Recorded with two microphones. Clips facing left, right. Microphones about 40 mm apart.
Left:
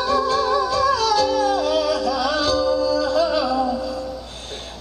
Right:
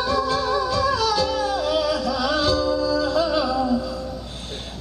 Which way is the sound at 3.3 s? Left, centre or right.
Centre.